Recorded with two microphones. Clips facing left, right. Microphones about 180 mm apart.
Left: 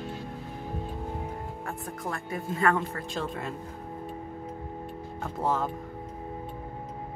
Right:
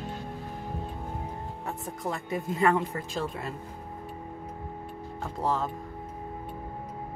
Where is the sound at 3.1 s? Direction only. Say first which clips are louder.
Even; centre (ahead or behind).